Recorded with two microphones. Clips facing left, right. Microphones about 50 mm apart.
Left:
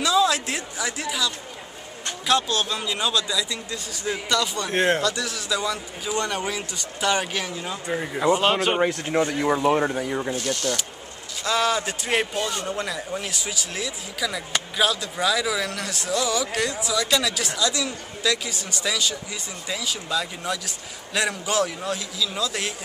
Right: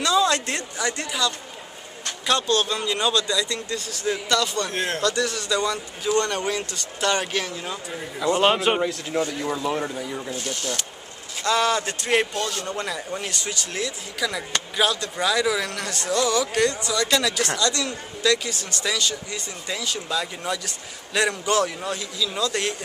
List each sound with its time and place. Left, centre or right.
0.0 s a sound: centre
2.2 s speech: centre
4.7 s speech: left
5.0 s speech: centre
7.9 s speech: left
11.4 s speech: centre
12.8 s speech: centre